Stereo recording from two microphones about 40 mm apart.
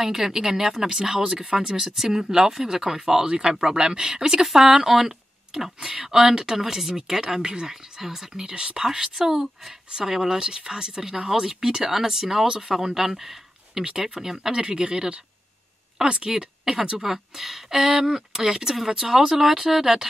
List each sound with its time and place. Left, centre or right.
0.0 s a woman's voice: centre
1.3 s speech: right
1.7 s a woman's voice: centre
14.5 s a woman's voice: right; by 20.1 s centre